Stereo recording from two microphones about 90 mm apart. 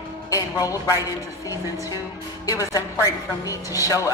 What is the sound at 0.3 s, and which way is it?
Speech, 40° left (ahead or behind).